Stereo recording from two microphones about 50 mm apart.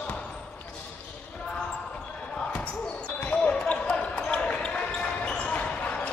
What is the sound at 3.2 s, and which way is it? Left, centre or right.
Basketball bounce, left.